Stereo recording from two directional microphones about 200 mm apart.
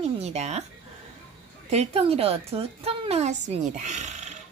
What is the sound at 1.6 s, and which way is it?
A woman's voice, 30° right (ahead or behind).